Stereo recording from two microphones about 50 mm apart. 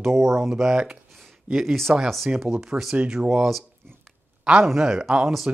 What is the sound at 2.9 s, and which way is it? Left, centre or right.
Speech, right.